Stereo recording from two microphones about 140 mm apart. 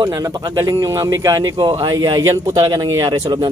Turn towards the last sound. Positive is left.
turn(degrees=-30)  # may be behind; listen again after turning